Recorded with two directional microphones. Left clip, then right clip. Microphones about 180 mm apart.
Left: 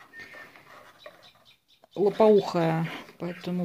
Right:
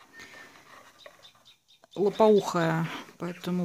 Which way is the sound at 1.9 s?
10° right (ahead or behind).